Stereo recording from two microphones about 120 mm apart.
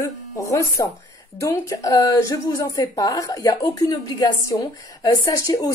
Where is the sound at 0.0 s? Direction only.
25° left (ahead or behind).